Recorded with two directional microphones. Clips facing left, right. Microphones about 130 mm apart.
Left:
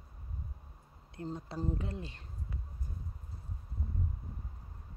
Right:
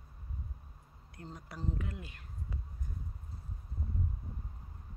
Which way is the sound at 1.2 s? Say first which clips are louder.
Left 5 dB; 25° left (ahead or behind).